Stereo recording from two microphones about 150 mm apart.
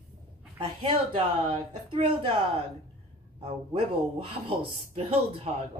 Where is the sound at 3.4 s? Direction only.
40° right (ahead or behind).